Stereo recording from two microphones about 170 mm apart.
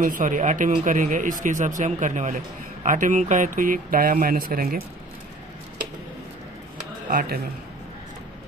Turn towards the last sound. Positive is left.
turn(degrees=-55)  # may be behind; listen again after turning